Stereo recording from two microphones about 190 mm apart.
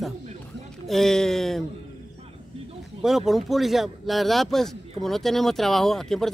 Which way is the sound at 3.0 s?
Centre (ahead or behind).